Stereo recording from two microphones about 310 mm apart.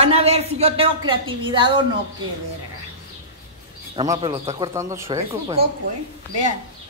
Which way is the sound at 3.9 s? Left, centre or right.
Centre.